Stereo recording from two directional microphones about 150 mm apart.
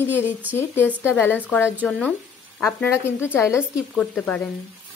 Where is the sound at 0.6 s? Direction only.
15° left (ahead or behind).